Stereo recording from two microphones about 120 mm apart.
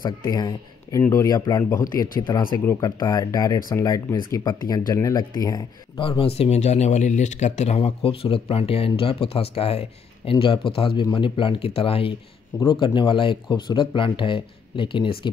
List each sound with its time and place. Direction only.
0.0 s speech: 35° left (ahead or behind)
2.6 s speech: 20° left (ahead or behind)
3.0 s speech: 30° left (ahead or behind)
6.0 s speech: 50° left (ahead or behind)